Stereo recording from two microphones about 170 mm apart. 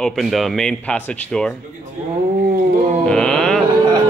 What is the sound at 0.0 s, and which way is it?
Speech, centre (ahead or behind).